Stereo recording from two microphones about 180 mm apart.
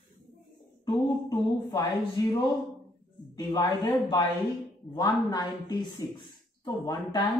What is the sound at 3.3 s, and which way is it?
Speech, 20° left (ahead or behind).